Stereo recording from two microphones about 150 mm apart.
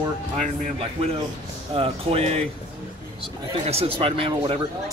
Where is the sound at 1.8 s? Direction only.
40° right (ahead or behind).